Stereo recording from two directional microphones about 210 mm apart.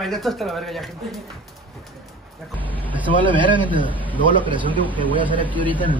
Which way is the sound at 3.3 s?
25° right (ahead or behind).